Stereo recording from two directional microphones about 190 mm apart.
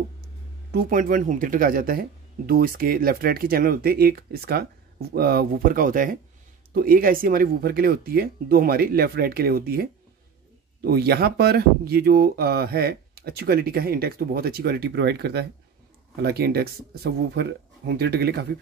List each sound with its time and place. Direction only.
0.7 s speech: 50° right (ahead or behind)